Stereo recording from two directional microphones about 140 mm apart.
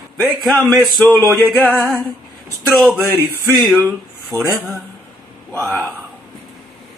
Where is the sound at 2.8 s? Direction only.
10° right (ahead or behind).